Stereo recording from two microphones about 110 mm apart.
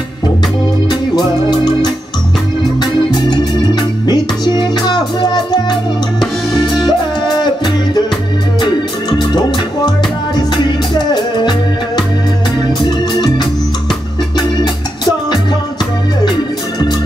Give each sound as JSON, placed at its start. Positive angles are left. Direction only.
{"t": 0.8, "sound": "music", "side_deg": 40}
{"t": 2.8, "sound": "organ", "side_deg": 40}
{"t": 4.0, "sound": "music", "side_deg": 40}
{"t": 6.9, "sound": "music", "side_deg": 40}
{"t": 9.8, "sound": "music", "side_deg": 40}